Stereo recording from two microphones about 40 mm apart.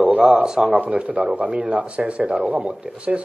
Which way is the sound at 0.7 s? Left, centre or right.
Right.